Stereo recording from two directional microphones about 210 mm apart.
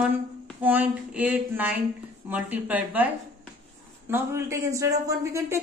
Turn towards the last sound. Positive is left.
turn(degrees=-15)  # may be behind; listen again after turning